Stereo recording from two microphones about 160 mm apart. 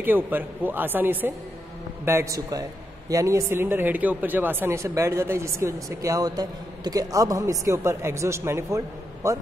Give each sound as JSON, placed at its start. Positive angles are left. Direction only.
{"t": 0.0, "sound": "speech", "side_deg": -10}